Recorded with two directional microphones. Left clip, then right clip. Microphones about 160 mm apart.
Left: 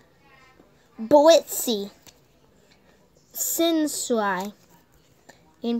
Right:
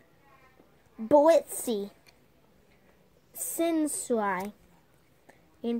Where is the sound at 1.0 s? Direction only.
Centre (ahead or behind).